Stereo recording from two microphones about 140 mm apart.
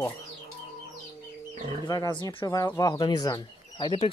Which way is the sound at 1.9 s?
30° left (ahead or behind).